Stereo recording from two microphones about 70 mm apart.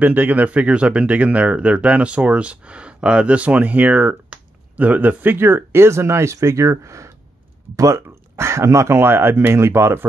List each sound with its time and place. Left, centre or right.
0.0 s speech: right